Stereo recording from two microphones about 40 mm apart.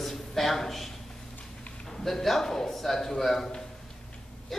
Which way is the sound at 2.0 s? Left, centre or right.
Centre.